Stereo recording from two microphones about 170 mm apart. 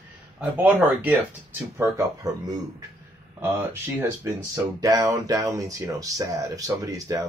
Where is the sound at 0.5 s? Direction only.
10° right (ahead or behind).